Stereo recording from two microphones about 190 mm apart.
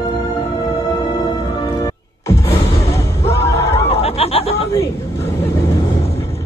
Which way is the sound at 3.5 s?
15° left (ahead or behind).